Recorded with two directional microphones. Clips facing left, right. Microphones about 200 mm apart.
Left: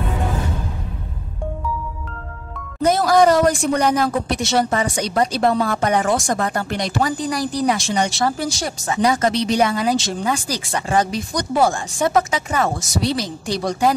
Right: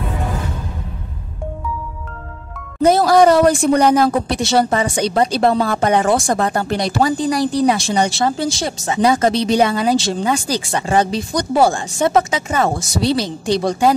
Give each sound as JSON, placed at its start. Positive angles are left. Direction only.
{"t": 2.8, "sound": "speech", "side_deg": -30}